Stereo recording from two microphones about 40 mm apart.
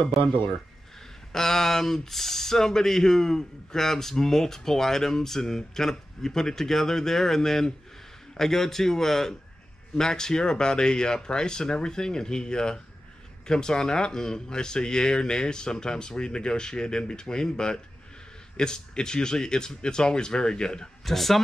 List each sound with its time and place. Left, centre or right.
0.1 s speech: centre
1.3 s speech: centre
21.0 s speech: centre